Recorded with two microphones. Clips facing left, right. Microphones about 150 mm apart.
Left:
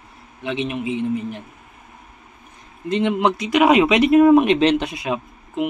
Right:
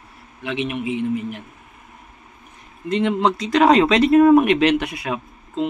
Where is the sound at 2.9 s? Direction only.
15° left (ahead or behind).